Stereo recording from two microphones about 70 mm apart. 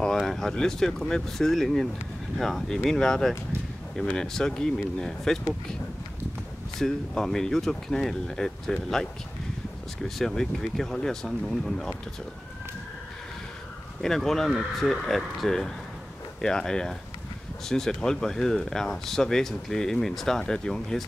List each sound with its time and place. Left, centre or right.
0.0 s speech: centre
6.8 s speech: centre
14.0 s speech: centre